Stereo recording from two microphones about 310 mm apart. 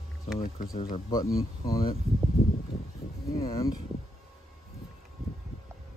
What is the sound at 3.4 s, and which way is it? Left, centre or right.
Speech, centre.